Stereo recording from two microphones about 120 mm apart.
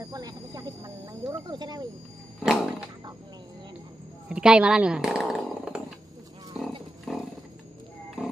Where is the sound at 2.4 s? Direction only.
5° right (ahead or behind).